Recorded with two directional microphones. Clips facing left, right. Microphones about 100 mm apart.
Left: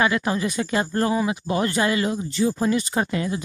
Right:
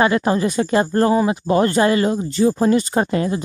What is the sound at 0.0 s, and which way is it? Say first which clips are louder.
Speech: right 5 dB; 40° right (ahead or behind).